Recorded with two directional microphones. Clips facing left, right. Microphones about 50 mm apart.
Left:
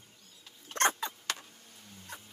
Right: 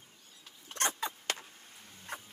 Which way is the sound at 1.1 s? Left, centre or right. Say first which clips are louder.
Right 1 dB; right.